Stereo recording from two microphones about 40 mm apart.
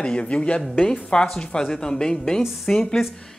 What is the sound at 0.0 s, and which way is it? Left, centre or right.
Speech, left.